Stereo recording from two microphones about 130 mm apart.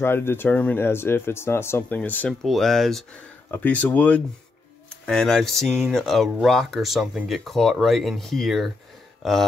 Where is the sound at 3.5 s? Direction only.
15° left (ahead or behind).